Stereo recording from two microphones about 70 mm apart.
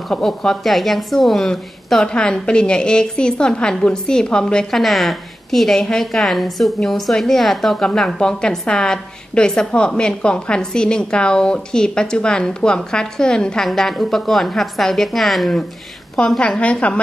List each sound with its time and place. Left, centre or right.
0.1 s a woman's voice: centre